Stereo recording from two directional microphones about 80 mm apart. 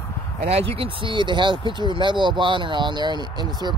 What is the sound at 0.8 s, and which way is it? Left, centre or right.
Speech, right.